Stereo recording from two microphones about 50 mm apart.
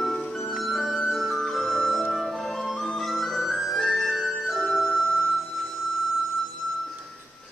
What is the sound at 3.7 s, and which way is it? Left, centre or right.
Flute, centre.